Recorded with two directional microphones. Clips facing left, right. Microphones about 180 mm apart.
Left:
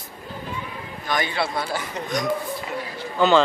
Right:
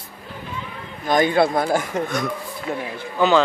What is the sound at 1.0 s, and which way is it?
Speech, 45° right (ahead or behind).